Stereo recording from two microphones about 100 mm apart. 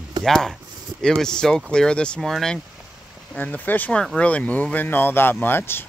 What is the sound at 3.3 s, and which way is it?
Speech, 15° left (ahead or behind).